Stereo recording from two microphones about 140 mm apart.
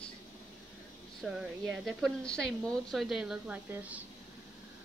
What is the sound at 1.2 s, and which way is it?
A woman's voice, centre (ahead or behind).